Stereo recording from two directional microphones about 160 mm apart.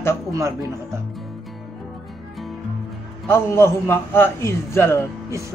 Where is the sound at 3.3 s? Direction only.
15° left (ahead or behind).